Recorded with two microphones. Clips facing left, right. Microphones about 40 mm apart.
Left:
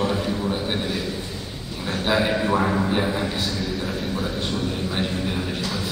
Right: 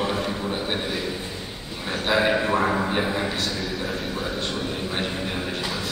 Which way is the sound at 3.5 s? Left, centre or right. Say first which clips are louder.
Left 1 dB; centre.